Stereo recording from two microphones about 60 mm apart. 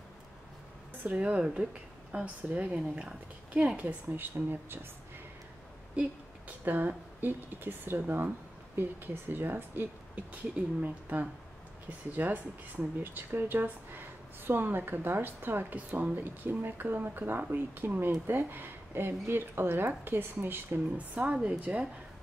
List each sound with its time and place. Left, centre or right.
1.0 s speech: right
5.9 s speech: right
21.1 s speech: right